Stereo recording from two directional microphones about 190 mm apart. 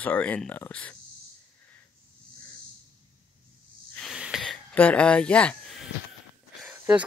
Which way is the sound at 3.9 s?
Centre (ahead or behind).